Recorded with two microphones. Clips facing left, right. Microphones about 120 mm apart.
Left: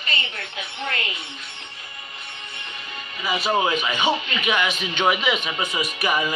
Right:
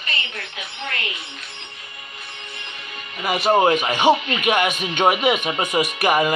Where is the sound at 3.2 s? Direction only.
55° right (ahead or behind).